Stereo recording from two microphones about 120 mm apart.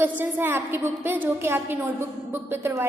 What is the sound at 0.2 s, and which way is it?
A woman's voice, 20° right (ahead or behind).